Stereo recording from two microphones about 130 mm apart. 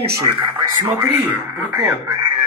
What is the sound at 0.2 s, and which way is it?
Speech, 40° right (ahead or behind).